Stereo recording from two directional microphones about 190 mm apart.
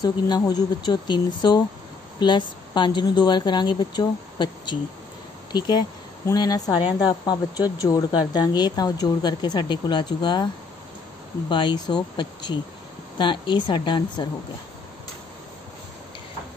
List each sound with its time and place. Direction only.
0.0 s speech: 20° left (ahead or behind)